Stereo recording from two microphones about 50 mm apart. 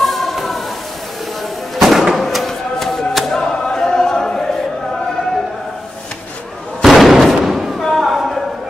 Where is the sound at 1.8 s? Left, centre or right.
Centre.